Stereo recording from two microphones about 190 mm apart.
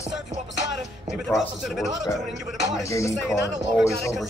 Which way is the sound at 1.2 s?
Centre (ahead or behind).